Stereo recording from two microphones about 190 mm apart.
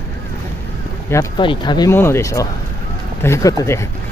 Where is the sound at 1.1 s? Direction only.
15° left (ahead or behind).